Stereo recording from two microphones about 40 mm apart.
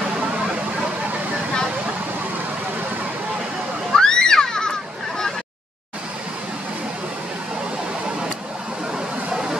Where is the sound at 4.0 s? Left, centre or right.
Centre.